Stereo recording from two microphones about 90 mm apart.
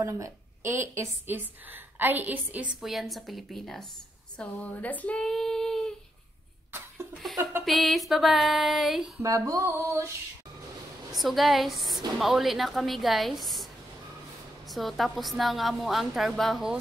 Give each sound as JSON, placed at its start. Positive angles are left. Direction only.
{"t": 0.0, "sound": "a woman's voice", "side_deg": -30}
{"t": 2.8, "sound": "a woman's voice", "side_deg": 0}
{"t": 4.4, "sound": "a woman's voice", "side_deg": 15}
{"t": 5.2, "sound": "child singing", "side_deg": 5}
{"t": 7.6, "sound": "a woman's voice", "side_deg": 0}
{"t": 9.2, "sound": "music", "side_deg": -35}
{"t": 11.1, "sound": "a woman's voice", "side_deg": 0}
{"t": 14.7, "sound": "a woman's voice", "side_deg": 0}